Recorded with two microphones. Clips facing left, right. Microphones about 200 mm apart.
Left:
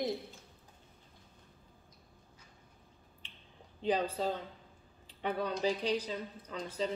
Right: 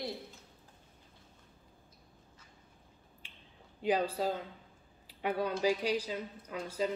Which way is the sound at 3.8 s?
10° right (ahead or behind).